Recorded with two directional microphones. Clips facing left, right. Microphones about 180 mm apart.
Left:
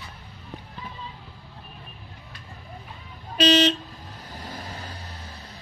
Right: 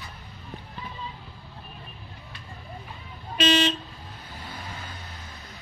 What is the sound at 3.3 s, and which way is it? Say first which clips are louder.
Vehicle: left 3 dB; 40° left (ahead or behind).